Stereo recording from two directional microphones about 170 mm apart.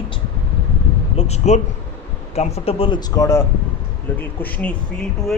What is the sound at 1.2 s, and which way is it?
A man's voice, 40° left (ahead or behind).